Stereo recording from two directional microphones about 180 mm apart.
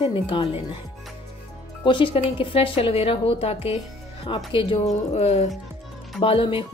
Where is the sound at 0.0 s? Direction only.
30° left (ahead or behind).